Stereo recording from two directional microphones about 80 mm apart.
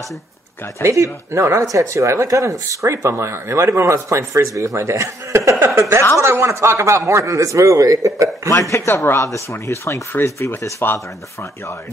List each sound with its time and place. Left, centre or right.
0.8 s speech: right
8.5 s speech: left